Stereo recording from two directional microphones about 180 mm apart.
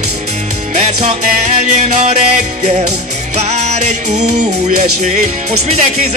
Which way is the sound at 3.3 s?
40° right (ahead or behind).